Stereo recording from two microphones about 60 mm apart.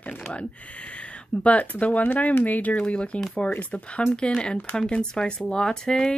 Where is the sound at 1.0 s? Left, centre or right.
Left.